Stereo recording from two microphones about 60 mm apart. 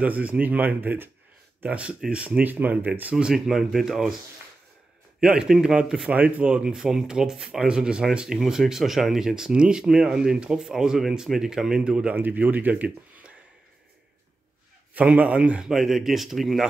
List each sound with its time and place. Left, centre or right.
0.0 s speech: right
1.6 s speech: right
3.3 s speech: centre
5.2 s speech: centre
6.0 s speech: right
12.2 s speech: right
15.0 s speech: right
15.6 s speech: centre